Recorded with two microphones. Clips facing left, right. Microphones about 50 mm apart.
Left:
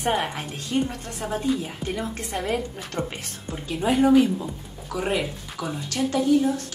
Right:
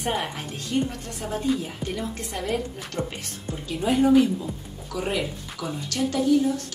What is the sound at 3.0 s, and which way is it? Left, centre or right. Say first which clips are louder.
Speech: left 1 dB; left.